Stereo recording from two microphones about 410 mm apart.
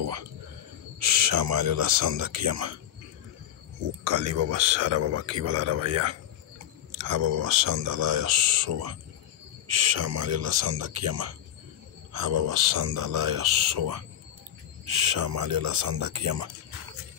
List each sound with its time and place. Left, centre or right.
0.9 s speech: right
4.0 s speech: right